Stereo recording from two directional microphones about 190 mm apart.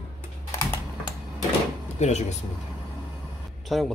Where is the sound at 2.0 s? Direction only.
35° left (ahead or behind).